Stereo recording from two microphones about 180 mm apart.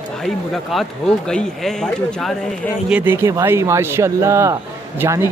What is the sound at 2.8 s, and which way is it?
Speech, 10° right (ahead or behind).